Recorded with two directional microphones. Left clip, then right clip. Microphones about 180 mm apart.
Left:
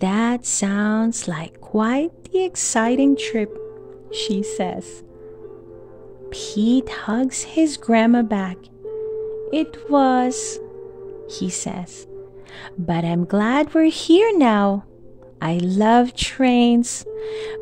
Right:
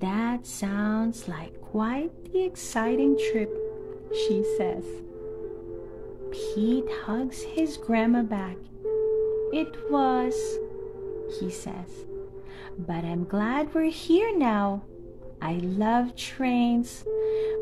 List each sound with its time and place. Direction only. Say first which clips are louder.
0.0 s speech: left 8 dB; 50° left (ahead or behind)
6.3 s a woman's voice: left 6 dB; 45° left (ahead or behind)